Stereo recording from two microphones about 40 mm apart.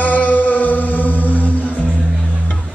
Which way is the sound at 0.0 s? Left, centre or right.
Left.